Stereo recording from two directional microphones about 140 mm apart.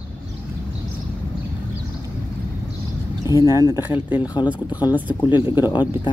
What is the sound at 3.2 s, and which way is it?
Speech, 20° right (ahead or behind).